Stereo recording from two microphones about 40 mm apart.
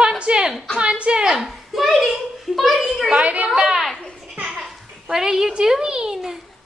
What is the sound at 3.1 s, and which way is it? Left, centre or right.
Speech, right.